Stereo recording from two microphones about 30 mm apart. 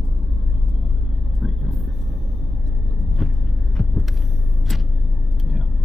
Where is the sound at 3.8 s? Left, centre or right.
Centre.